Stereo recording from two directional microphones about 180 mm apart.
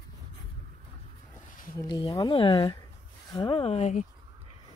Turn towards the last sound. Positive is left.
turn(degrees=40)  # may be behind; listen again after turning